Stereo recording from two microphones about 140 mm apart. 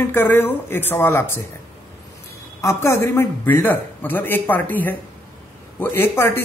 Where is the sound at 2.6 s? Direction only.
20° left (ahead or behind).